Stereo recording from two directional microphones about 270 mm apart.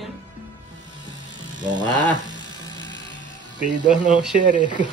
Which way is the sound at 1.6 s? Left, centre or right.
Centre.